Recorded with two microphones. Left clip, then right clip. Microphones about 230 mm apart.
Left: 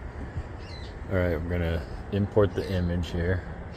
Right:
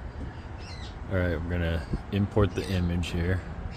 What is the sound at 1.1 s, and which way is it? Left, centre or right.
A man's voice, centre.